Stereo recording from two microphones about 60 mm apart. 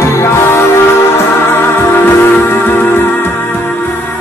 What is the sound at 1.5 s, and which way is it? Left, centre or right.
Music, left.